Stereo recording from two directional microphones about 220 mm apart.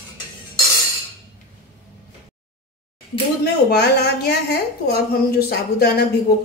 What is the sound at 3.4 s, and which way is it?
A woman's voice, 45° left (ahead or behind).